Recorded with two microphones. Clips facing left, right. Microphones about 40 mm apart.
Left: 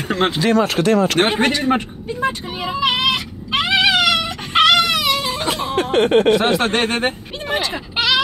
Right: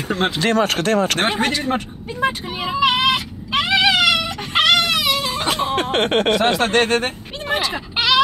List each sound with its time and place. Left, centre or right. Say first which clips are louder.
0.4 s speech: left 1 dB; right
1.3 s a man's voice: left 3 dB; centre
2.8 s dog: right 2 dB; centre
5.8 s speech: left 7 dB; right
6.3 s a man's voice: even; left
7.4 s a sound: even; centre